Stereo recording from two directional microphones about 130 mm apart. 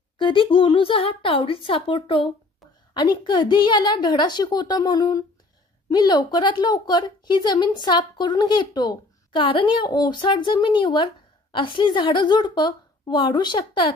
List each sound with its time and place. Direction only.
0.2 s a woman's voice: 40° left (ahead or behind)